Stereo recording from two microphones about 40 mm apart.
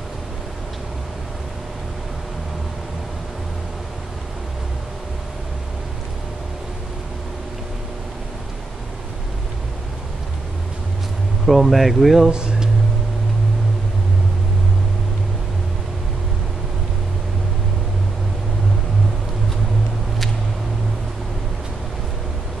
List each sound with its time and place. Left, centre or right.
11.4 s speech: centre
12.3 s speech: right